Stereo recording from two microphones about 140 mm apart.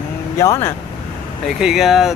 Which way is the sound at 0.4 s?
20° left (ahead or behind).